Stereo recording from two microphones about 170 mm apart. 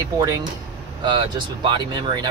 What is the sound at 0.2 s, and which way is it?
Speech, 20° right (ahead or behind).